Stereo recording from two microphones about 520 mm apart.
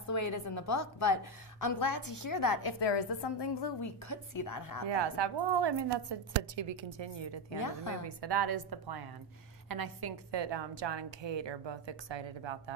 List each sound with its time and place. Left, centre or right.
0.1 s a woman's voice: left
2.8 s a woman's voice: left
3.8 s a woman's voice: left
4.8 s a woman's voice: right